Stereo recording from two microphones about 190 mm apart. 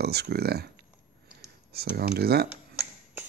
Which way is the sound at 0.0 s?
60° right (ahead or behind).